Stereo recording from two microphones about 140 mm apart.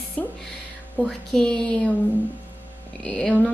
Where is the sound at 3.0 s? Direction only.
10° left (ahead or behind).